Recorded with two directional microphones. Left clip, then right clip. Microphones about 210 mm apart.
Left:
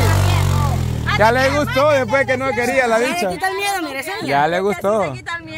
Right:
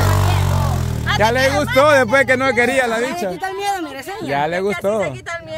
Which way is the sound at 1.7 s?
30° right (ahead or behind).